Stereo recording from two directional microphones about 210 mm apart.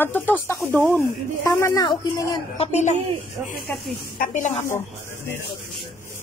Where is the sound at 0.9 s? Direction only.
10° left (ahead or behind); by 3.0 s 35° left (ahead or behind).